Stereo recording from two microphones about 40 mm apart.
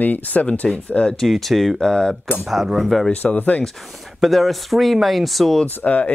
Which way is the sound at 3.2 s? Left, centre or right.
Centre.